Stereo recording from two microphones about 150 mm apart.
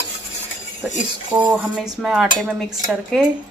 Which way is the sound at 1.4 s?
5° right (ahead or behind).